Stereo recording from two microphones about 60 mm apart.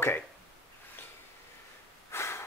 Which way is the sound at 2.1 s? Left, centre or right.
Left.